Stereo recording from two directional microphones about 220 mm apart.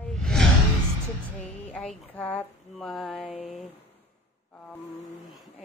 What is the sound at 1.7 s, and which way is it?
Speech, 5° left (ahead or behind).